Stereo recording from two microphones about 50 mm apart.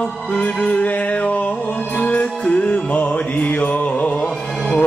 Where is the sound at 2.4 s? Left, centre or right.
Left.